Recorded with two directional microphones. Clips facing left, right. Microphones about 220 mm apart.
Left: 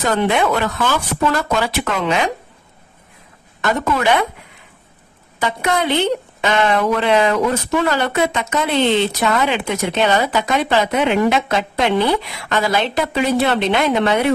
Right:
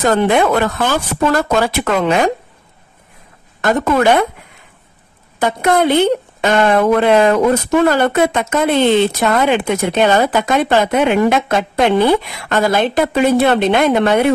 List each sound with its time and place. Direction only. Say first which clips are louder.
0.0 s a woman's voice: right 4 dB; 45° right (ahead or behind)
3.6 s a woman's voice: right 5 dB; 45° right (ahead or behind)
5.4 s a woman's voice: right 6 dB; 50° right (ahead or behind)